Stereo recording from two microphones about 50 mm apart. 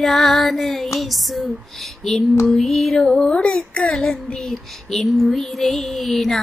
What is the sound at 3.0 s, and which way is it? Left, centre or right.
Speech, centre.